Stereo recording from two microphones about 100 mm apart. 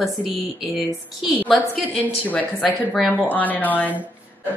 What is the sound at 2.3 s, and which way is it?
Speech, 15° left (ahead or behind).